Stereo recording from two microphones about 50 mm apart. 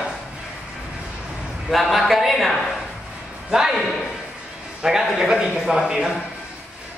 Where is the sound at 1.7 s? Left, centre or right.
Centre.